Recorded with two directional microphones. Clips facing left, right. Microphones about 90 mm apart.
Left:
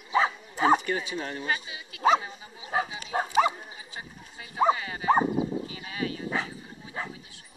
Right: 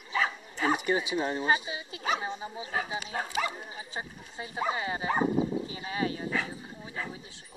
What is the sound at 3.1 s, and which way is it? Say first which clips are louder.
Speech: left 9 dB; 30° left (ahead or behind).